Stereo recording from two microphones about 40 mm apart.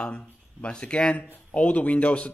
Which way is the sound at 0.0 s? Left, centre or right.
Left.